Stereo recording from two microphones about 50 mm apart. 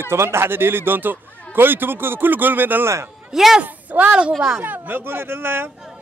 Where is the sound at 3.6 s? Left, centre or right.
Right.